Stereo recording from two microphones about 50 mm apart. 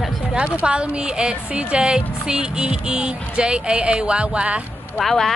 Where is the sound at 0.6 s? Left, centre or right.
Right.